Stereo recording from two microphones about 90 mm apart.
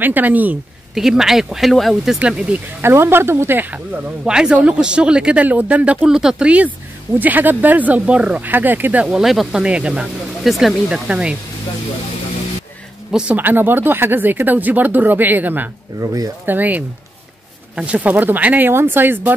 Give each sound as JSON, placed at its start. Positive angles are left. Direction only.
{"t": 0.0, "sound": "speech", "side_deg": -20}
{"t": 0.9, "sound": "speech", "side_deg": -5}
{"t": 2.1, "sound": "speech", "side_deg": -15}
{"t": 2.8, "sound": "speech", "side_deg": -25}
{"t": 9.0, "sound": "speech", "side_deg": -5}
{"t": 13.1, "sound": "speech", "side_deg": -20}
{"t": 16.0, "sound": "speech", "side_deg": -40}
{"t": 16.4, "sound": "speech", "side_deg": -20}